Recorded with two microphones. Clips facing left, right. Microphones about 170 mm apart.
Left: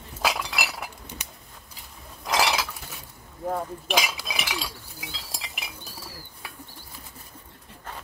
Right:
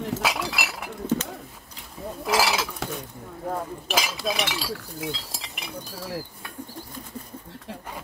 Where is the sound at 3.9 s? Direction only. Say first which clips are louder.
Right 2 dB; centre (ahead or behind).